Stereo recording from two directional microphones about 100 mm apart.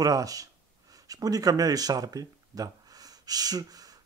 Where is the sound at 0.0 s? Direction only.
35° right (ahead or behind).